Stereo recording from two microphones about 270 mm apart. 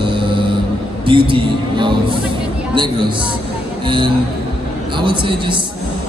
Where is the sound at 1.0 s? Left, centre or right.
Centre.